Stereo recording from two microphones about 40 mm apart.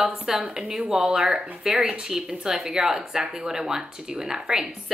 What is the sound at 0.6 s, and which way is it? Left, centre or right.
A woman's voice, centre.